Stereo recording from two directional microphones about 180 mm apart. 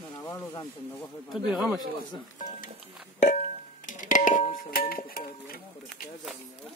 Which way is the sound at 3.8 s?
45° left (ahead or behind).